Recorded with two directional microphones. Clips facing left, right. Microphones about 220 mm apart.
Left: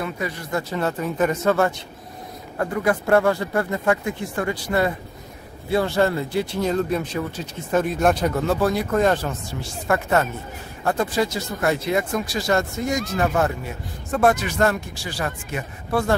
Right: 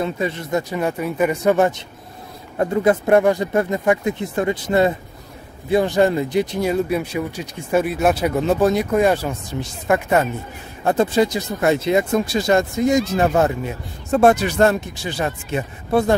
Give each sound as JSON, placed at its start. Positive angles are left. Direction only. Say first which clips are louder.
{"t": 0.0, "sound": "a man's voice", "louder": "right 5 dB", "side_deg": -25}
{"t": 8.4, "sound": "a man's voice", "louder": "right 4 dB", "side_deg": -20}